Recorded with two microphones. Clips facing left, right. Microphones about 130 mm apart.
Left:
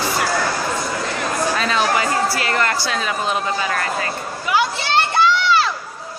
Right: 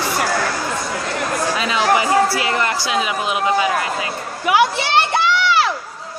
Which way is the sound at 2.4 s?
15° right (ahead or behind).